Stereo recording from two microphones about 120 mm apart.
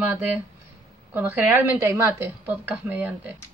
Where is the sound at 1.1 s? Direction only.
15° right (ahead or behind).